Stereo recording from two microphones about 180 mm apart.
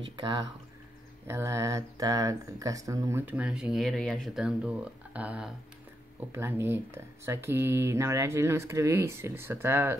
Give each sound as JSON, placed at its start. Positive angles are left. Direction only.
{"t": 0.2, "sound": "speech", "side_deg": -25}